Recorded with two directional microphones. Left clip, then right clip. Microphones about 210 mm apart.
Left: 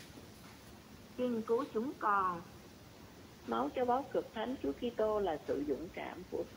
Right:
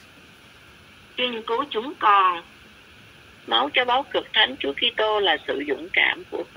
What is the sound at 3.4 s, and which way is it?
Speech, 50° right (ahead or behind).